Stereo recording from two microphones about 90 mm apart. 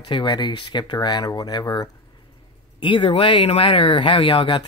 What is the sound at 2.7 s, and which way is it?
Speech, 60° left (ahead or behind).